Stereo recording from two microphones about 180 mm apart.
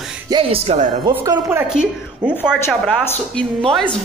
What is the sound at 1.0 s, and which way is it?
Speech, 20° right (ahead or behind).